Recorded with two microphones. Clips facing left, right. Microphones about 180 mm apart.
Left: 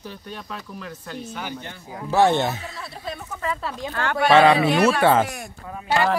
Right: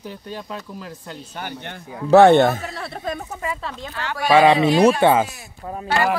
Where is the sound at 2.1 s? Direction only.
65° right (ahead or behind); by 3.2 s 50° right (ahead or behind).